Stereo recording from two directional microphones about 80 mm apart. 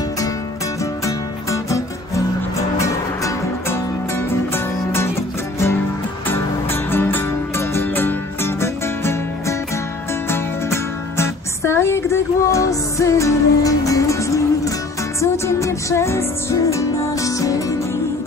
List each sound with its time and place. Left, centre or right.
1.0 s music: left
6.2 s music: left